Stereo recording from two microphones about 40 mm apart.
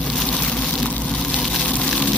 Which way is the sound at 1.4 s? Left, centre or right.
Left.